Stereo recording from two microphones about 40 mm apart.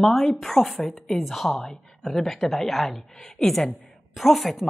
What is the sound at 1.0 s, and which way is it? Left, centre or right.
Speech, centre.